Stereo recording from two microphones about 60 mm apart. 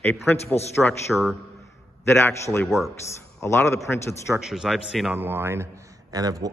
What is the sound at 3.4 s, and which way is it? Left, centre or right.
Speech, left.